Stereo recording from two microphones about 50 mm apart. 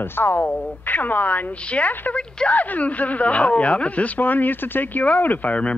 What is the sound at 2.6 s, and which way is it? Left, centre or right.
Speech, left.